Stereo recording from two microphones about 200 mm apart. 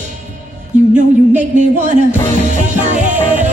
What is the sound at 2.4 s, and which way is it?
Music, 35° right (ahead or behind).